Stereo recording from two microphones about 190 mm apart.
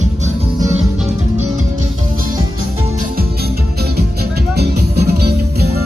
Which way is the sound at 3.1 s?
55° right (ahead or behind).